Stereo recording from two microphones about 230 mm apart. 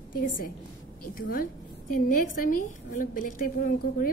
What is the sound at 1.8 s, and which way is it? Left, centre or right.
A woman's voice, left.